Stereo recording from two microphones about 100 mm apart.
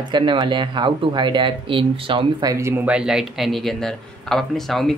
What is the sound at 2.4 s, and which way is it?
Speech, 30° right (ahead or behind).